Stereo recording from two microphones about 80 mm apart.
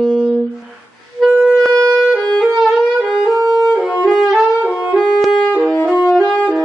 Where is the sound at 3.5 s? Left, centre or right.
Centre.